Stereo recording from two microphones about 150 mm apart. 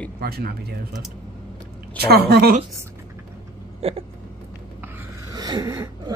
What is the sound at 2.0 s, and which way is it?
Speech, 90° right.